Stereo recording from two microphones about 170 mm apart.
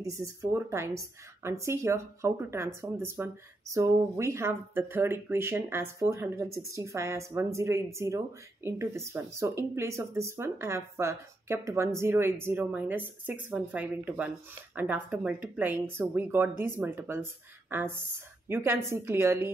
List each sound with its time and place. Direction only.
0.0 s speech: 20° right (ahead or behind)